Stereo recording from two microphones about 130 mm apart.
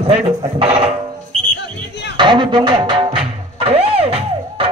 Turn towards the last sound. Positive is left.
turn(degrees=-45)  # may be behind; listen again after turning